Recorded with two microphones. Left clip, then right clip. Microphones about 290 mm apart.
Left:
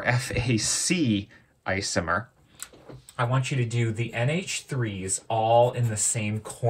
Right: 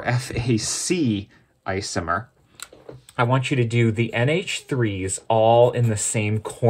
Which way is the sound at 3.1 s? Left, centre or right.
Right.